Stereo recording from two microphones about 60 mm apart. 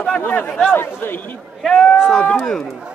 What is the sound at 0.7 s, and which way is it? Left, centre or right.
Speech, left.